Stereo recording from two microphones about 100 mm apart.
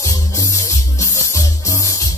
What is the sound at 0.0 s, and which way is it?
Music, 30° left (ahead or behind).